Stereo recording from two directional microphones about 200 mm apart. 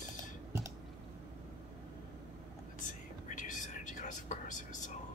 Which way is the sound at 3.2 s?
40° left (ahead or behind).